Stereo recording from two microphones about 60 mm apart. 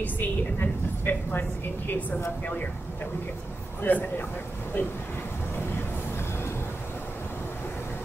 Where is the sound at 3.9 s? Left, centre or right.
Left.